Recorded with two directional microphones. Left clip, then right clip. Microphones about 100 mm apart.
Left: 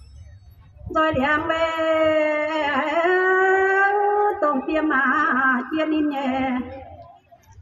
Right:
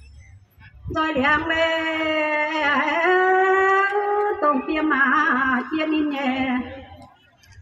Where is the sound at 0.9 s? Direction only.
30° left (ahead or behind).